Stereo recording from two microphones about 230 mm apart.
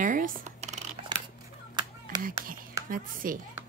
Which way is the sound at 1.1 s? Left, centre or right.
Centre.